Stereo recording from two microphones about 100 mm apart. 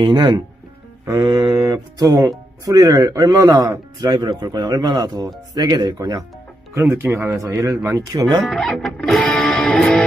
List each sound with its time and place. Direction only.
0.0 s speech: 50° right (ahead or behind)
6.7 s speech: 25° right (ahead or behind); by 8.5 s 45° right (ahead or behind)
8.5 s speech: centre (ahead or behind)
8.9 s music: 5° left (ahead or behind)